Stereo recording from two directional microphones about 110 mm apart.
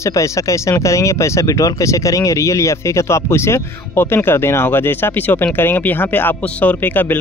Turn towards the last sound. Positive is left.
turn(degrees=15)  # may be behind; listen again after turning